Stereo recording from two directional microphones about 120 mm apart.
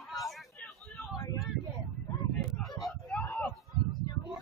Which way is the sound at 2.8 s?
10° left (ahead or behind).